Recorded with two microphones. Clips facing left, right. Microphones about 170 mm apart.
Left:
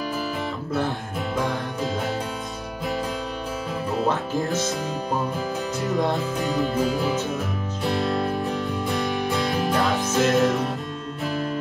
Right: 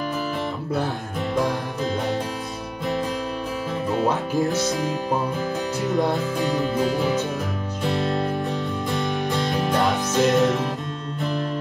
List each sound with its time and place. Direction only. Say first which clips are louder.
4.1 s music: right 2 dB; 15° right (ahead or behind)
5.8 s music: right 1 dB; centre (ahead or behind)